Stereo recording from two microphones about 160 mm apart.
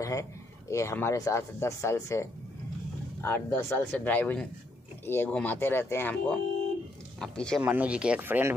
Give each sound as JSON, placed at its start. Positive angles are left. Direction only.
{"t": 0.0, "sound": "speech", "side_deg": 20}
{"t": 7.6, "sound": "speech", "side_deg": -10}